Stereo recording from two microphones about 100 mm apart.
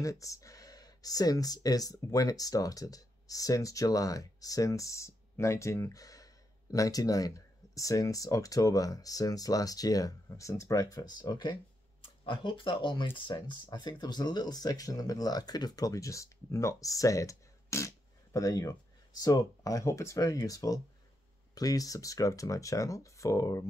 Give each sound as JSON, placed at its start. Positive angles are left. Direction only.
{"t": 0.0, "sound": "speech", "side_deg": 35}
{"t": 12.3, "sound": "speech", "side_deg": 60}